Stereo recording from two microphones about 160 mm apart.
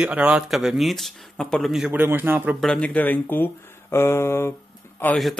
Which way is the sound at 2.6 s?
5° left (ahead or behind).